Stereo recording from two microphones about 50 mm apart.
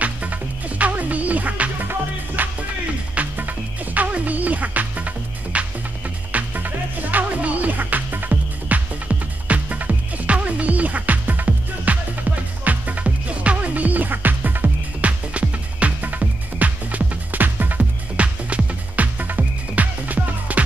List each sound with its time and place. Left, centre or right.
0.0 s music: right
15.0 s music: right